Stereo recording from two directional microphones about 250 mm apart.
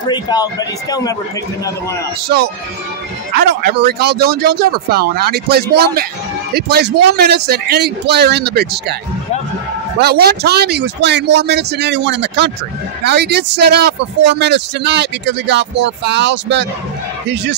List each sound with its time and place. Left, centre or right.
0.0 s a man's voice: centre
2.2 s speech: right
9.9 s speech: right